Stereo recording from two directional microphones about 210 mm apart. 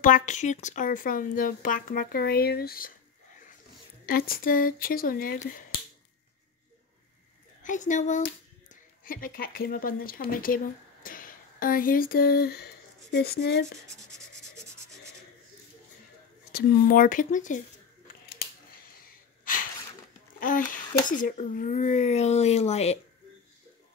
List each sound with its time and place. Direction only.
0.0 s speech: 35° left (ahead or behind)
4.0 s speech: 45° left (ahead or behind)
7.6 s speech: 35° left (ahead or behind); by 13.7 s 55° left (ahead or behind)
16.5 s speech: 45° left (ahead or behind)
19.5 s a sound: 40° left (ahead or behind)
21.1 s speech: 40° left (ahead or behind)